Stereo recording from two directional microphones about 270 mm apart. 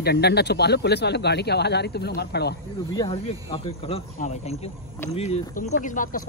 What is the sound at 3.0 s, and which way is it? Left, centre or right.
Speech, centre.